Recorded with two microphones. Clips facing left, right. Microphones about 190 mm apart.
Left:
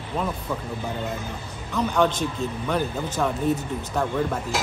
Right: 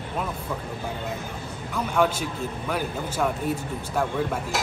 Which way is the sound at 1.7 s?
5° right (ahead or behind).